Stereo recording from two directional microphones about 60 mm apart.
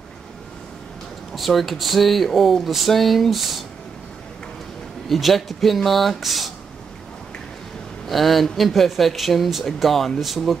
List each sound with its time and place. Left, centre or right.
1.3 s speech: centre
5.1 s speech: centre
8.1 s speech: centre